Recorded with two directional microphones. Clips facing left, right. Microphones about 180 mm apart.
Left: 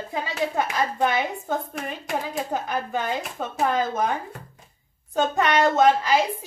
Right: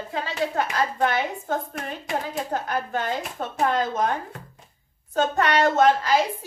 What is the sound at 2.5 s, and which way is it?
Speech, 15° left (ahead or behind).